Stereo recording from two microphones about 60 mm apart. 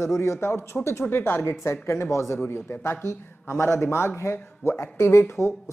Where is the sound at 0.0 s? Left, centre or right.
Left.